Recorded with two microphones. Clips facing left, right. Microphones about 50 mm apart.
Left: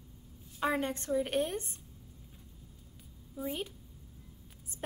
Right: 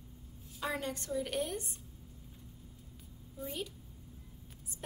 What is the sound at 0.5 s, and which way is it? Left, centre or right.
A woman's voice, left.